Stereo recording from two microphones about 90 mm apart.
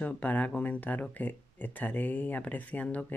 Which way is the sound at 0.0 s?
15° left (ahead or behind).